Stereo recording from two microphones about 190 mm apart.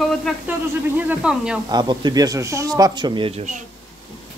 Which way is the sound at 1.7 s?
20° right (ahead or behind).